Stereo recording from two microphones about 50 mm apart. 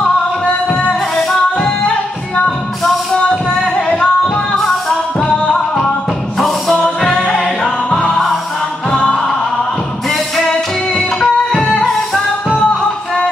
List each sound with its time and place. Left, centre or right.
0.7 s music: left
3.7 s music: centre
4.6 s music: centre
5.2 s music: centre
7.0 s music: centre